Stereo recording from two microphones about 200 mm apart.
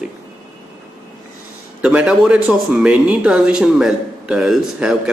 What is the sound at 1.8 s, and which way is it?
A man's voice, 5° right (ahead or behind).